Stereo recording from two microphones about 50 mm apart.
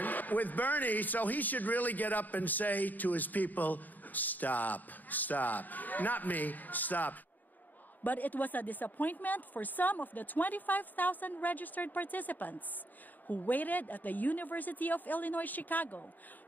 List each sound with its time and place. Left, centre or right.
0.0 s a man's voice: left